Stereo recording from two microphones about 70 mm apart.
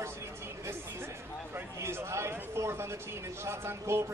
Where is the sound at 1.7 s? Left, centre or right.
Right.